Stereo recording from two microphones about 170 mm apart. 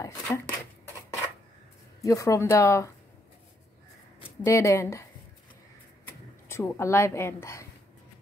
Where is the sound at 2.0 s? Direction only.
20° left (ahead or behind).